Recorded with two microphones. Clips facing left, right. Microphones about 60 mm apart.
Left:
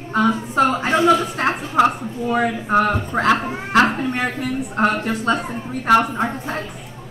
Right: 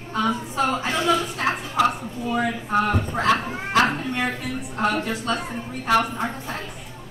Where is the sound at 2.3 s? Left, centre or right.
Left.